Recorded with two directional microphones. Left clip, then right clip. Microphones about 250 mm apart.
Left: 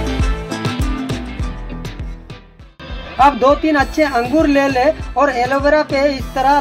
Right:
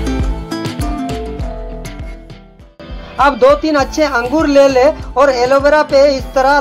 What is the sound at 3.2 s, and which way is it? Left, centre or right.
Speech, centre.